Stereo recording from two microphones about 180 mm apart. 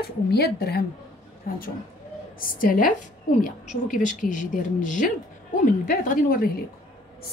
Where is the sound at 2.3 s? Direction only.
50° left (ahead or behind).